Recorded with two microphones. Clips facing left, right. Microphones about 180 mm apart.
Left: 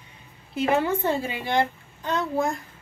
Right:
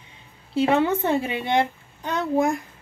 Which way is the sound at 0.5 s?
25° right (ahead or behind).